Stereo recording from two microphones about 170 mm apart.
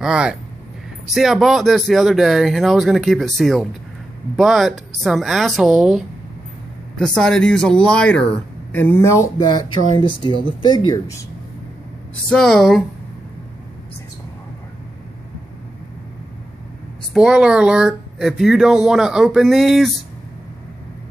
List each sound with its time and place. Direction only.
0.0 s speech: 5° right (ahead or behind); by 11.1 s 25° left (ahead or behind)
12.3 s speech: centre (ahead or behind)
17.1 s speech: 5° right (ahead or behind)